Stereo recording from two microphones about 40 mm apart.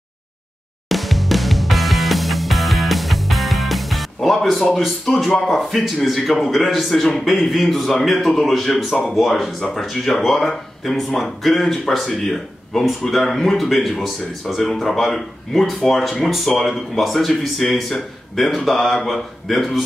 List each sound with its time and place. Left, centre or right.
0.8 s music: centre
4.7 s speech: centre